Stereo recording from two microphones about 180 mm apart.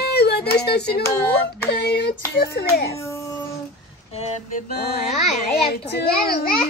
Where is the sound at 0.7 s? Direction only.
65° left (ahead or behind).